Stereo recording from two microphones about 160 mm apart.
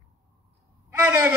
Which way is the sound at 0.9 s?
15° right (ahead or behind).